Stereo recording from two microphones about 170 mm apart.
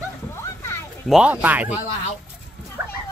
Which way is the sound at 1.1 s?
5° right (ahead or behind).